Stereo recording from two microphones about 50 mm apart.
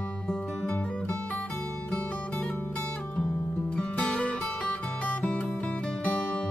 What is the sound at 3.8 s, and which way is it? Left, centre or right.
Music, left.